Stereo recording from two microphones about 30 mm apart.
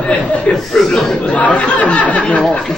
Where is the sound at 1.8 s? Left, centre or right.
Left.